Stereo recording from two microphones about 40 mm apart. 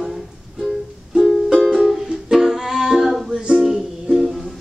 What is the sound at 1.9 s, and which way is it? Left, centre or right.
Music, centre.